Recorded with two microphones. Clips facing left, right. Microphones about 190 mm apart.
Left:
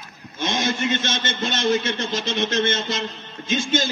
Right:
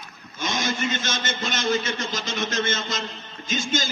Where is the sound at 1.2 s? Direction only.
25° left (ahead or behind).